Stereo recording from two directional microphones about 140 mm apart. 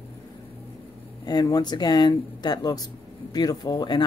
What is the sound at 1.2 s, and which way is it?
Speech, 30° left (ahead or behind).